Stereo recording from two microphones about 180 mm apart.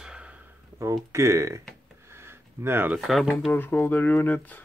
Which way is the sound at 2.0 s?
15° right (ahead or behind).